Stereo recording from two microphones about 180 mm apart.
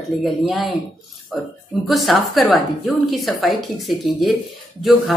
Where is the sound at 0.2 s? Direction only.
Centre (ahead or behind).